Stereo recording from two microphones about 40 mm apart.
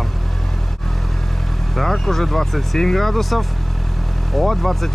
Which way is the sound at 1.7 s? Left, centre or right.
Centre.